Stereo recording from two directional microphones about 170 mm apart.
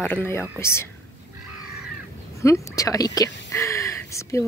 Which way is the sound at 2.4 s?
20° left (ahead or behind).